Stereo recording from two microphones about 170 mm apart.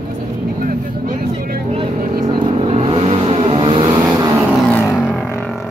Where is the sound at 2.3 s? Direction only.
30° right (ahead or behind).